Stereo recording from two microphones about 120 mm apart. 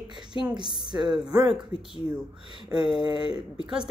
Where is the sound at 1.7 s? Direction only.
50° left (ahead or behind).